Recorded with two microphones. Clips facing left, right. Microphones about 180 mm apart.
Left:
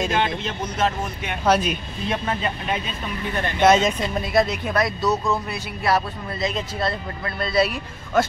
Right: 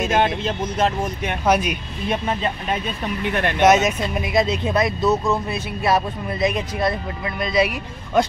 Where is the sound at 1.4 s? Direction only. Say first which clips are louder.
Even; 10° right (ahead or behind).